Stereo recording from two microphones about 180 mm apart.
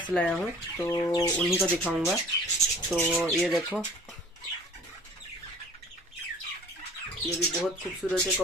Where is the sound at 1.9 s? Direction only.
5° right (ahead or behind).